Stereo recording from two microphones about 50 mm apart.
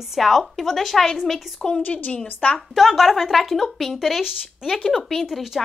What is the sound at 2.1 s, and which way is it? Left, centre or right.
Speech, left.